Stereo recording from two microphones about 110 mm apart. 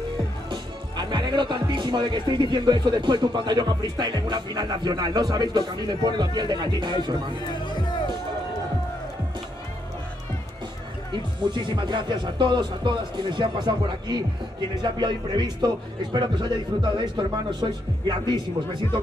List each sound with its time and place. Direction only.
0.5 s speech: 45° right (ahead or behind)
11.4 s speech: 45° right (ahead or behind)